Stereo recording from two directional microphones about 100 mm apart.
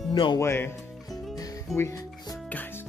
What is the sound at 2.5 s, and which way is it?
Music, 20° left (ahead or behind).